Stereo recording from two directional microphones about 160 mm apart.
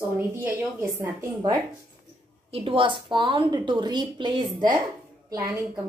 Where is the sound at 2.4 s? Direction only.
35° right (ahead or behind).